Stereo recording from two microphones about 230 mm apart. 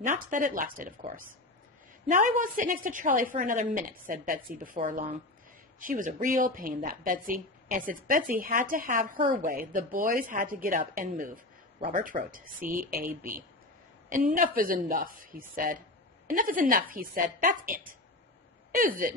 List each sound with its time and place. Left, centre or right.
0.0 s a woman's voice: right